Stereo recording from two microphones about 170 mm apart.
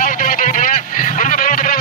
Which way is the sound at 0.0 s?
50° left (ahead or behind).